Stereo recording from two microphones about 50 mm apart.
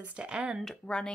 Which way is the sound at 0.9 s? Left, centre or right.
Left.